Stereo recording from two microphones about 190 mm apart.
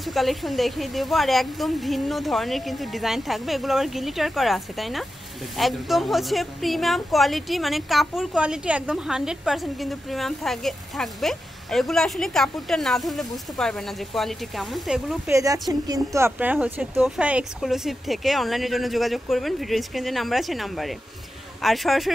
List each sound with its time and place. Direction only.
0.0 s a woman's voice: centre (ahead or behind)
15.3 s a woman's voice: 15° right (ahead or behind); by 22.1 s centre (ahead or behind)